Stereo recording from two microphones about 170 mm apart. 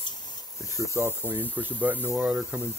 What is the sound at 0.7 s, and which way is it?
Speech, 15° right (ahead or behind).